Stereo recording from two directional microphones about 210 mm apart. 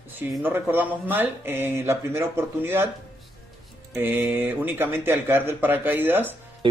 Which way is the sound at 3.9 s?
10° right (ahead or behind).